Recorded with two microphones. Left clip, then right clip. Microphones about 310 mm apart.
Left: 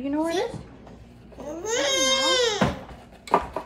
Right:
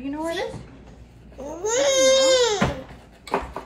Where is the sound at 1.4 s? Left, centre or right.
Centre.